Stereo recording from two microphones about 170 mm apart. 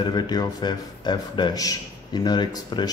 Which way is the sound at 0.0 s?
25° left (ahead or behind).